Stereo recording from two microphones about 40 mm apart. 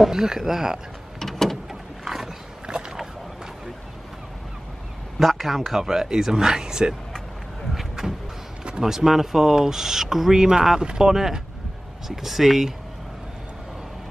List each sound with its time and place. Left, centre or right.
0.0 s speech: centre
1.2 s vehicle: centre
1.7 s vehicle: centre
2.7 s a sound: centre
5.2 s a man's voice: centre
7.7 s vehicle: centre
8.6 s speech: centre